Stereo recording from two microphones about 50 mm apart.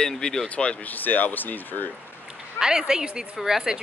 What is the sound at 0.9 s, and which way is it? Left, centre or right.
Speech, left.